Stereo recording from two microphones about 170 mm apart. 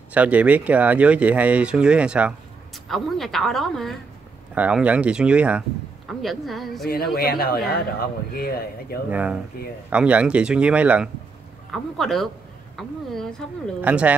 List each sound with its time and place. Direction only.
0.1 s a woman's voice: 10° right (ahead or behind)
6.9 s speech: 65° left (ahead or behind)
9.1 s a woman's voice: 10° right (ahead or behind)
13.7 s speech: 10° right (ahead or behind)